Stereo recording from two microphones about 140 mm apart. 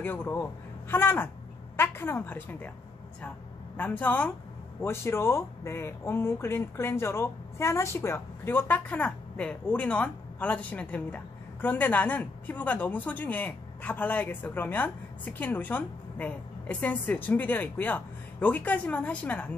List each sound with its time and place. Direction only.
0.0 s a man's voice: 15° left (ahead or behind)
3.7 s speech: 10° left (ahead or behind)